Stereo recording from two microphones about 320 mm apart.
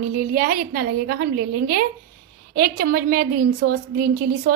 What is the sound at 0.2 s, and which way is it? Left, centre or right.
A woman's voice, right.